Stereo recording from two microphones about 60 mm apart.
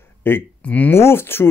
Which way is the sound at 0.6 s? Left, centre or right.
Left.